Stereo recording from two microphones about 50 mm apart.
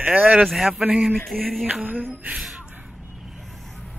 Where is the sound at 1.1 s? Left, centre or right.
Centre.